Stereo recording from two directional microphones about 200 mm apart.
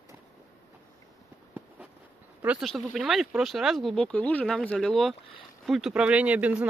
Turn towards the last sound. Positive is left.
turn(degrees=-5)  # may be behind; listen again after turning